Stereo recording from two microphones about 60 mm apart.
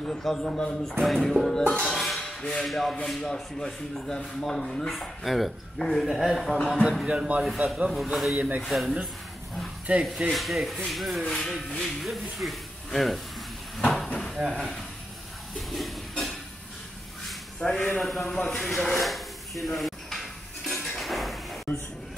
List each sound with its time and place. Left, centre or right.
0.2 s speech: centre
1.0 s speech: centre
7.1 s speech: centre
7.9 s speech: centre
10.2 s speech: centre
13.7 s a sound: centre
14.3 s speech: centre
15.5 s a sound: centre
17.7 s a man's voice: left
18.0 s speech: centre
19.6 s dishes: centre
21.0 s sliding door: centre